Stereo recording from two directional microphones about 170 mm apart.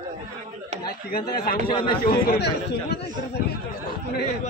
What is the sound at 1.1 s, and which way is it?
Speech, 60° left (ahead or behind).